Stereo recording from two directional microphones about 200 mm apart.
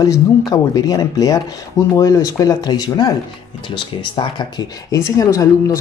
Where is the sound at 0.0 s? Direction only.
20° left (ahead or behind).